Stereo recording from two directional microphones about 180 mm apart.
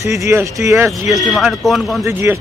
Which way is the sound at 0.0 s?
15° right (ahead or behind).